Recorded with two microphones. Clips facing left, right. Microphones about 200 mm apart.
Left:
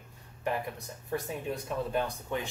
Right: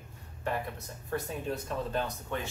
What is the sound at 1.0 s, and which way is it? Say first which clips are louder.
Speech: even; 15° left (ahead or behind).